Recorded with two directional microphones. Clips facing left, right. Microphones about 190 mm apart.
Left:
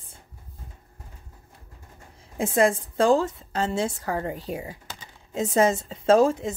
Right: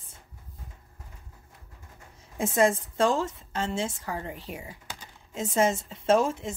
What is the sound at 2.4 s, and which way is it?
A woman's voice, 30° left (ahead or behind).